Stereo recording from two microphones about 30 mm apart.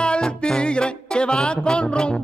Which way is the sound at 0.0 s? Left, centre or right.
Left.